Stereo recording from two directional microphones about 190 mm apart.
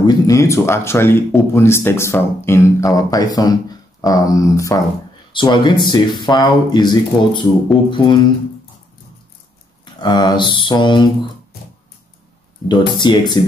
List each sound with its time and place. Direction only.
0.0 s speech: 15° left (ahead or behind)
9.9 s speech: 20° left (ahead or behind)
12.6 s speech: 25° left (ahead or behind)